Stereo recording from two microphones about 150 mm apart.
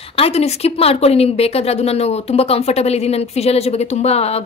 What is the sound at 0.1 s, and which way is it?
A woman's voice, 40° left (ahead or behind).